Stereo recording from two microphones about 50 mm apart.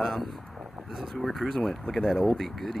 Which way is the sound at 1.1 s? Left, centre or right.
Centre.